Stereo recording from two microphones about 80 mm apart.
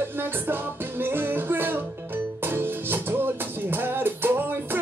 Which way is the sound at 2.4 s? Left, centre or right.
Right.